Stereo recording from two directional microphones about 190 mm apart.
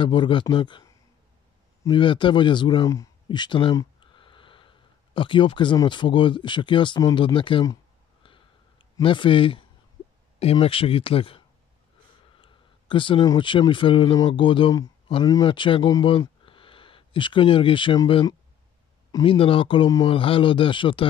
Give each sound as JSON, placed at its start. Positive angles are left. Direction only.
{"t": 0.0, "sound": "speech", "side_deg": 25}
{"t": 8.2, "sound": "a sound", "side_deg": 25}
{"t": 10.4, "sound": "speech", "side_deg": 30}